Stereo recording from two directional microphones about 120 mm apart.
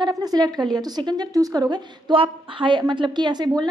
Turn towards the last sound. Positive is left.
turn(degrees=-35)  # may be behind; listen again after turning